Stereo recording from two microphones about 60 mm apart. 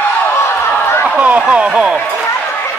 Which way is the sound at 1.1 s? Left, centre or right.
Right.